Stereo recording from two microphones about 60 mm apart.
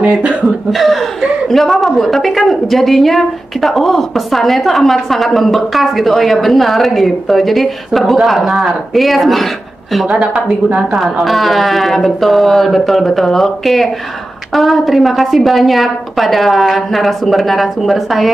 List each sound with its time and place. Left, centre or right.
0.7 s a woman's voice: centre
10.0 s speech: centre
10.9 s a woman's voice: centre